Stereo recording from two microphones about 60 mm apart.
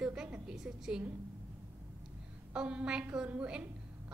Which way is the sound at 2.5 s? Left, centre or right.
Centre.